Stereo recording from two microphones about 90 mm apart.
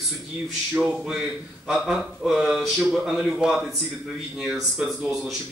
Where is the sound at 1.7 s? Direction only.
5° right (ahead or behind).